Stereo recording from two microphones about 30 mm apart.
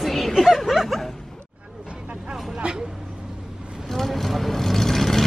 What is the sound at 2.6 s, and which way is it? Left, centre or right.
Vehicle, right.